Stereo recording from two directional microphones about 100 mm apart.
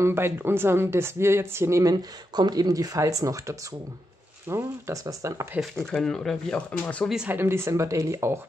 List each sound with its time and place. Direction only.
0.0 s speech: 25° right (ahead or behind)
5.6 s speech: 5° left (ahead or behind)
7.2 s speech: 25° right (ahead or behind)